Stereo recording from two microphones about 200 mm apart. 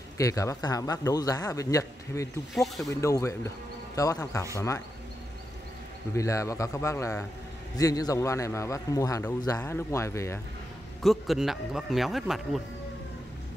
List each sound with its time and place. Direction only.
0.2 s a man's voice: 15° left (ahead or behind)
2.5 s speech: centre (ahead or behind)
2.9 s a man's voice: 15° left (ahead or behind)
6.1 s a man's voice: 15° left (ahead or behind)
11.0 s speech: centre (ahead or behind)